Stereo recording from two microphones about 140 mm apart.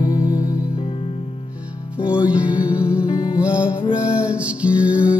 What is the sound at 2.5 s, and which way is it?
Music, 25° left (ahead or behind).